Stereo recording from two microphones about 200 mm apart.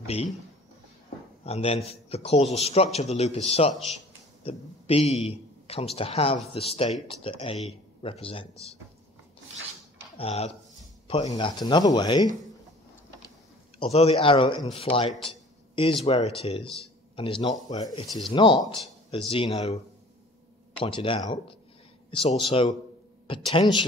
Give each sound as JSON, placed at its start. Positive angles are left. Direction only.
{"t": 0.0, "sound": "speech", "side_deg": 30}
{"t": 1.4, "sound": "a man's voice", "side_deg": 30}
{"t": 10.1, "sound": "speech", "side_deg": 30}
{"t": 11.3, "sound": "a man's voice", "side_deg": 20}
{"t": 13.7, "sound": "a man's voice", "side_deg": 30}
{"t": 20.8, "sound": "a man's voice", "side_deg": 25}